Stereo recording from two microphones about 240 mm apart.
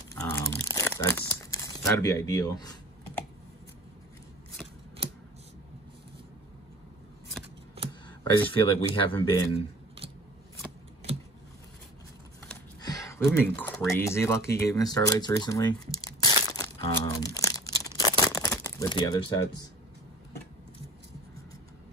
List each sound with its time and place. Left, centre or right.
0.1 s crumpling: centre
8.2 s speech: left
12.8 s a sound: centre
13.2 s speech: centre
14.6 s a sound: centre
17.9 s crumpling: centre